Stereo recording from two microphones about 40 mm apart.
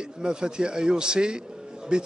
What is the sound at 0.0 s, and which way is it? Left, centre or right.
A man's voice, right.